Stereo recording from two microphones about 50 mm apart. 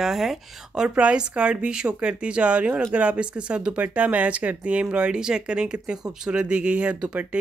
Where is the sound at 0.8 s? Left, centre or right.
Right.